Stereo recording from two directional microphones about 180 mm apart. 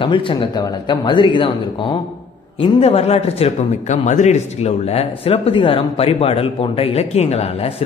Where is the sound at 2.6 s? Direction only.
35° left (ahead or behind).